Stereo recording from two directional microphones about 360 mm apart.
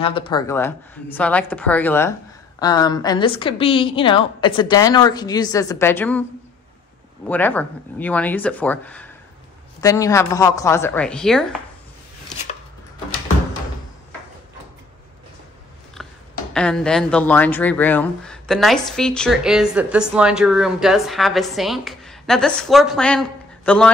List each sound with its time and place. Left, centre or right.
0.0 s a woman's voice: centre
7.2 s a woman's voice: centre
16.0 s a sound: centre
16.5 s speech: centre